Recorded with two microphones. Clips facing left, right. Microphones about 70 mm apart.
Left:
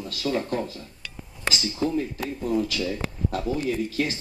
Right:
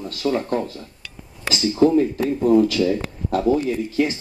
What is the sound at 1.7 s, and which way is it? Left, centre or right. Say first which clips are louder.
Speech: right 13 dB; right.